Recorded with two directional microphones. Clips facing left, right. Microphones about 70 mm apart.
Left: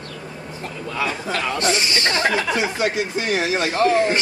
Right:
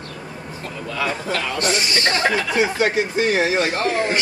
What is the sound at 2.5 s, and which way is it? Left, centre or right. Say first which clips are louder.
Speech: right 3 dB; right.